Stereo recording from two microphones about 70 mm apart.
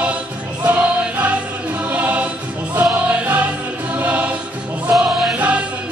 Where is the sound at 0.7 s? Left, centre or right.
Centre.